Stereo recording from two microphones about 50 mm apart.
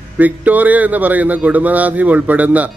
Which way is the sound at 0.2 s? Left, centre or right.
Right.